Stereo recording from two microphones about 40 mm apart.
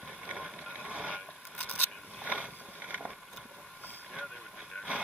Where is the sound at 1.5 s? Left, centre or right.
Left.